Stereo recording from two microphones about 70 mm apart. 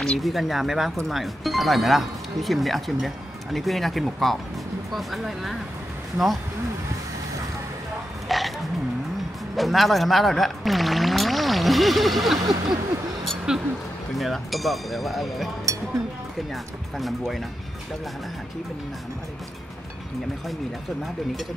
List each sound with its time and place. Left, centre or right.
0.0 s speech: centre
8.3 s frog: centre
9.6 s speech: centre
13.5 s speech: centre
16.9 s speech: centre